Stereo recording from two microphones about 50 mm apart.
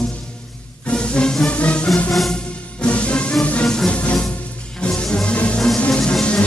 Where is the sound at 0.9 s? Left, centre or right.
Centre.